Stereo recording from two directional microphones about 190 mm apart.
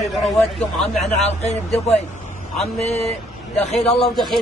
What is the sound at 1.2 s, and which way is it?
Speech, 35° left (ahead or behind).